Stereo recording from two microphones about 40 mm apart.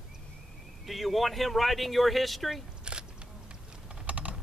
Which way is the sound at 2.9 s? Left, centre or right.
Right.